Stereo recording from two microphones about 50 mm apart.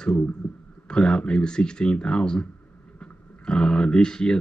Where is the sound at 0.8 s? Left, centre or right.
Centre.